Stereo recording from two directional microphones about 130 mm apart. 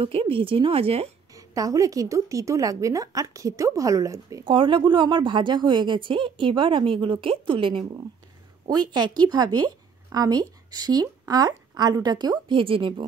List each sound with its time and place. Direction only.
0.0 s speech: 45° right (ahead or behind)
1.3 s a woman's voice: 25° right (ahead or behind)
4.5 s a woman's voice: 40° right (ahead or behind)
8.6 s a woman's voice: 30° right (ahead or behind)